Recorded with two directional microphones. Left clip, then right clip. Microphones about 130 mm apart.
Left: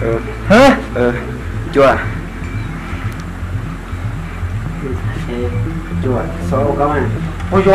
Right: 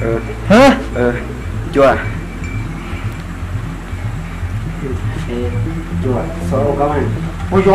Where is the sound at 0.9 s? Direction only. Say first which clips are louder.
Left 1 dB; centre (ahead or behind).